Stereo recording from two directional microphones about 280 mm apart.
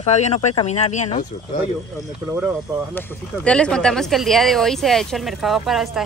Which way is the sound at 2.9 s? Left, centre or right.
Centre.